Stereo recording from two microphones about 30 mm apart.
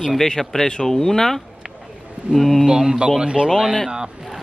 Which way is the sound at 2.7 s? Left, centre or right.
Right.